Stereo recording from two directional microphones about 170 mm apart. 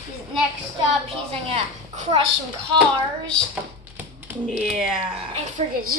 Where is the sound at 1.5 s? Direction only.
35° right (ahead or behind).